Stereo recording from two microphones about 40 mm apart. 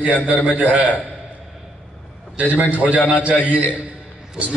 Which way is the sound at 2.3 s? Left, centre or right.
Right.